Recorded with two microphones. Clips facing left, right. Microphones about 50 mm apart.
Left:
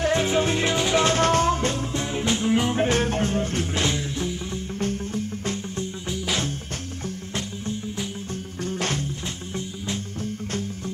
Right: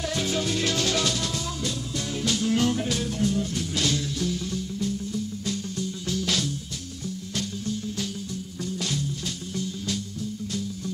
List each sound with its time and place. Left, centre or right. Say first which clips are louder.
0.0 s music: left 6 dB; left
1.0 s music: left 10 dB; left
2.1 s music: left 2 dB; left
2.8 s music: left 5 dB; left
3.8 s music: left 1 dB; left
4.7 s music: left 4 dB; left
6.0 s music: even; left
8.6 s music: left 4 dB; left